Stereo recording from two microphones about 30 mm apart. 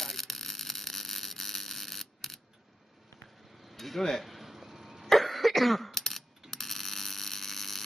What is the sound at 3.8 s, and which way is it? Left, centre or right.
Speech, centre.